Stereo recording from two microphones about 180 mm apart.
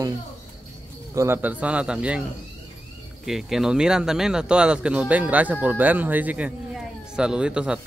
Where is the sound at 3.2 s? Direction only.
Centre (ahead or behind).